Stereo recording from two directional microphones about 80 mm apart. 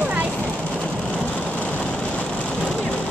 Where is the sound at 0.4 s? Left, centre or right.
Centre.